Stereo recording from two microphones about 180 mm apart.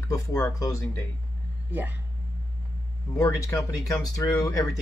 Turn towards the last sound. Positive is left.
turn(degrees=20)  # may be behind; listen again after turning